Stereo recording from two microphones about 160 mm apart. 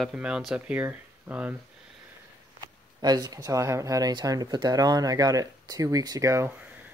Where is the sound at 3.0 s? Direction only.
25° right (ahead or behind).